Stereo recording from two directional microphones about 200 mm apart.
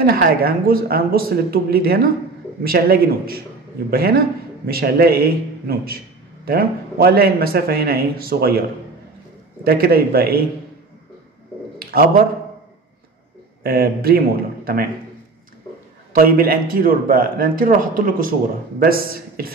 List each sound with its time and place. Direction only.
0.0 s a man's voice: 50° right (ahead or behind)
9.6 s a man's voice: 50° right (ahead or behind)
11.8 s a sound: 45° right (ahead or behind)
13.6 s a man's voice: 50° right (ahead or behind)
16.2 s a man's voice: 45° right (ahead or behind)